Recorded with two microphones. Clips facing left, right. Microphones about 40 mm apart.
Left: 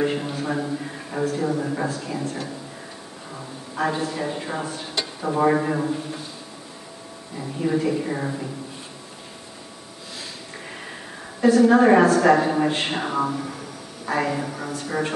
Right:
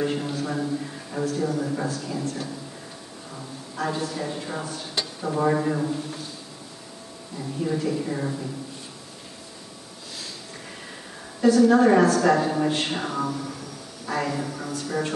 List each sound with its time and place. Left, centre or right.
0.0 s a woman's voice: left
7.3 s a woman's voice: left
11.4 s a woman's voice: left